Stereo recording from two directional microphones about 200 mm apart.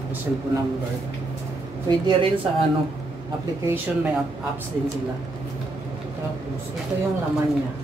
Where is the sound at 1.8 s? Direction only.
20° right (ahead or behind).